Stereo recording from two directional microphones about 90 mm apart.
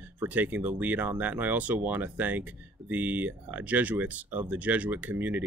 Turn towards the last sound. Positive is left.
turn(degrees=-20)  # may be behind; listen again after turning